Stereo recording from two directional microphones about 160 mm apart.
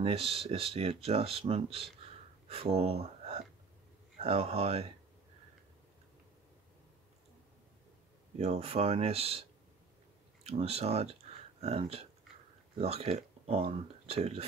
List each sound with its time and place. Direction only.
0.0 s speech: 35° right (ahead or behind)
8.4 s speech: 40° right (ahead or behind)